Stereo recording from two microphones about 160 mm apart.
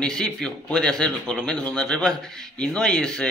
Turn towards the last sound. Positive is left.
turn(degrees=5)  # may be behind; listen again after turning